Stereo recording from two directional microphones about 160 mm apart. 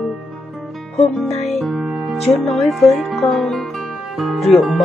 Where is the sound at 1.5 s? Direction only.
Centre (ahead or behind).